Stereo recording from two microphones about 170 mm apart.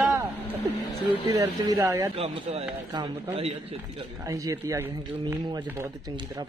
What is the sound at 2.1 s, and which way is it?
Speech, 35° right (ahead or behind).